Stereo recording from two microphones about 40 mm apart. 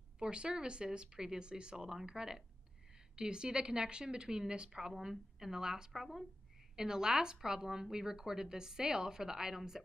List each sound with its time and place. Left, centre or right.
0.2 s a woman's voice: right